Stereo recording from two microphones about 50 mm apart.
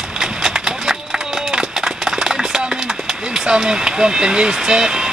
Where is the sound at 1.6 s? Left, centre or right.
Centre.